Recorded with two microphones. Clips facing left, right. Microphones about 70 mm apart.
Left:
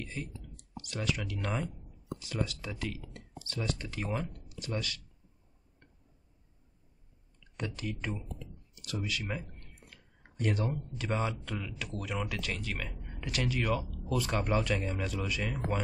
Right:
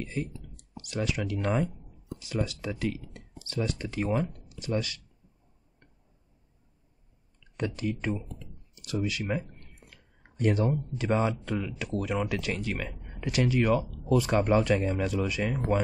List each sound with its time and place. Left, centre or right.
0.0 s speech: right
8.8 s speech: centre
9.2 s speech: right
10.4 s speech: right